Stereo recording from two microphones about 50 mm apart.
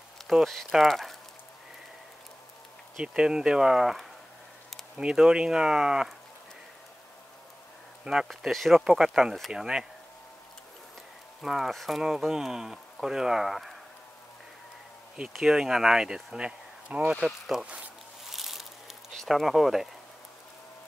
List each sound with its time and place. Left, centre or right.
0.3 s speech: centre
3.0 s speech: centre
8.0 s speech: centre
8.3 s speech: centre
11.4 s speech: centre
15.5 s speech: centre
17.2 s speech: centre
17.6 s speech: right
18.3 s a sound: centre